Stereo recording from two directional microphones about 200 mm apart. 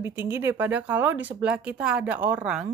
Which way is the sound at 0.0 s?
10° right (ahead or behind).